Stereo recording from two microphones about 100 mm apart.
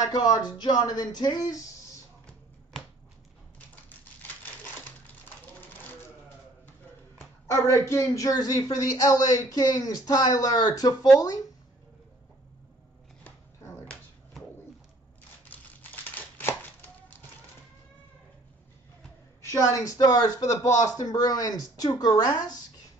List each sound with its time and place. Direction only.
0.0 s speech: 45° left (ahead or behind)
7.6 s a man's voice: 30° left (ahead or behind)
15.5 s crumpling: 15° left (ahead or behind)
19.4 s a man's voice: 30° left (ahead or behind)